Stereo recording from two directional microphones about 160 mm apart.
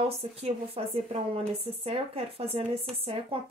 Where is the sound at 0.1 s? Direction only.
40° right (ahead or behind).